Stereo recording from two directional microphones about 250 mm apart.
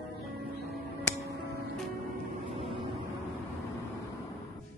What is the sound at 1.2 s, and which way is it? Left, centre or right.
Music, right.